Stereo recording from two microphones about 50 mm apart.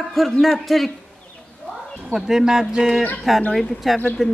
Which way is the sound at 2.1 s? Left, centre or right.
Centre.